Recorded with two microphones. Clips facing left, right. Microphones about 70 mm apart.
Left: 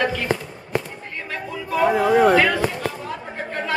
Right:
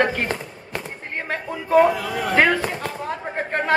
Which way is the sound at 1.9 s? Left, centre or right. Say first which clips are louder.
Left 9 dB; left.